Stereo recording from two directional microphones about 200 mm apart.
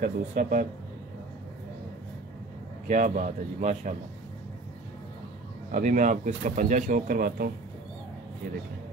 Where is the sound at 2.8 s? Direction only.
40° right (ahead or behind).